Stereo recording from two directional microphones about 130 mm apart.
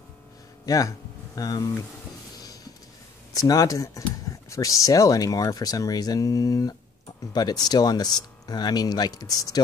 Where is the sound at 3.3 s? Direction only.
25° left (ahead or behind).